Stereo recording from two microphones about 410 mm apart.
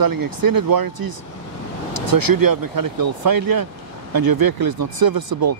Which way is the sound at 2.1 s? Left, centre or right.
Right.